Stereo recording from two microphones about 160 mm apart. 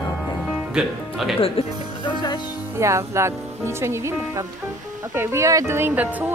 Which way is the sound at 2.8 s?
20° right (ahead or behind).